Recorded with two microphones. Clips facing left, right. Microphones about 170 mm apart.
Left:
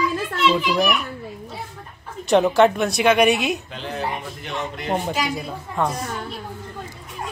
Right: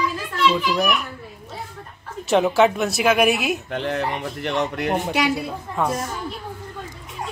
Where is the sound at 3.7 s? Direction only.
65° right (ahead or behind).